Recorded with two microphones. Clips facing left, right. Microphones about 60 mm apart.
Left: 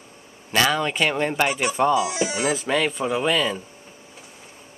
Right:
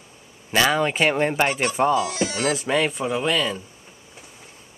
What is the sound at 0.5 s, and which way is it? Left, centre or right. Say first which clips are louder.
Speech: right 1 dB; centre.